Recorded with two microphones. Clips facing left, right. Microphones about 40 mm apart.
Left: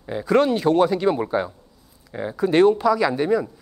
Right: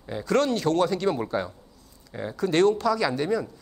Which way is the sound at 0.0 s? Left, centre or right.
Centre.